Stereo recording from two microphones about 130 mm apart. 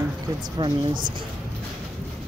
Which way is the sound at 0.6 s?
35° right (ahead or behind).